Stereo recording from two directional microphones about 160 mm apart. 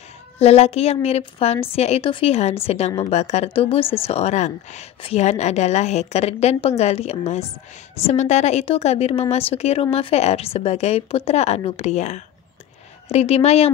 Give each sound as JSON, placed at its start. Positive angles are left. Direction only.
{"t": 0.4, "sound": "a woman's voice", "side_deg": 40}